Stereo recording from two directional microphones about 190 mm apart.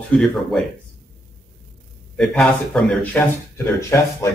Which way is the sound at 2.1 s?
5° left (ahead or behind).